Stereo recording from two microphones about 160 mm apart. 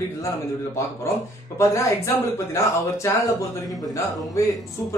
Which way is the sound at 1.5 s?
20° left (ahead or behind).